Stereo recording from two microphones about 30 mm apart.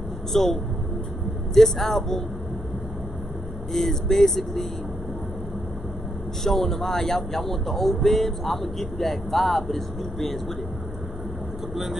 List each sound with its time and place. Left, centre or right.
0.3 s speech: centre
3.7 s speech: centre
6.4 s speech: centre
11.7 s speech: centre